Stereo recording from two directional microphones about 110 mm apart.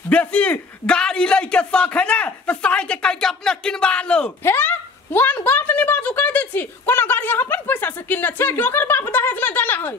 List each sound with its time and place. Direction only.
0.1 s speech: 10° left (ahead or behind)
4.4 s a woman's voice: 20° left (ahead or behind)